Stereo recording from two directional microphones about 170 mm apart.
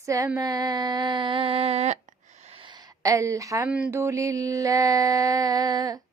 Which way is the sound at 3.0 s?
20° right (ahead or behind).